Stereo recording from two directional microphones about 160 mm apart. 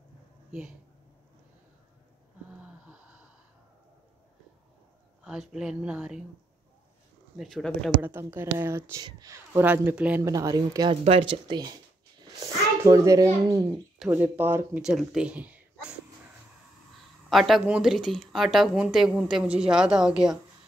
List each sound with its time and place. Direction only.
0.5 s speech: 5° right (ahead or behind)
2.6 s wheeze: 10° right (ahead or behind)
5.2 s speech: 5° right (ahead or behind)
7.3 s speech: centre (ahead or behind)
8.0 s speech: 15° right (ahead or behind)
10.2 s speech: 20° right (ahead or behind)
11.1 s a child's voice: 35° right (ahead or behind); by 14.8 s 15° right (ahead or behind)
14.8 s speech: 5° right (ahead or behind)
17.3 s speech: centre (ahead or behind)